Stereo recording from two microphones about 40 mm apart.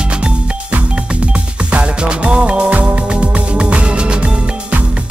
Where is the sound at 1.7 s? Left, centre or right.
Right.